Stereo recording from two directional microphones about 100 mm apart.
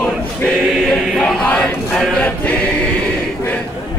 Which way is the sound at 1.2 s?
5° left (ahead or behind).